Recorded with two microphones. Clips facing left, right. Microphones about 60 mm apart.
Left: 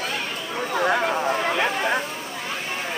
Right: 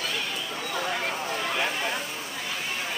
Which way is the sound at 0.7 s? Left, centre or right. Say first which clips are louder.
Left 9 dB; left.